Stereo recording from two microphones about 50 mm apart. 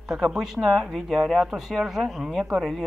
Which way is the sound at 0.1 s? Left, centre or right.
Centre.